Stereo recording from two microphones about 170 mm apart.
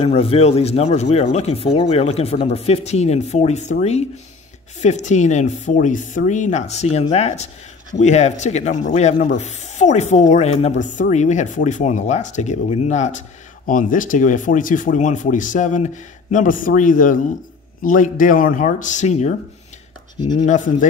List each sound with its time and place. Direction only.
0.0 s speech: 35° left (ahead or behind)
4.8 s speech: 45° left (ahead or behind)
20.2 s speech: 25° left (ahead or behind)
20.4 s speech: 50° left (ahead or behind)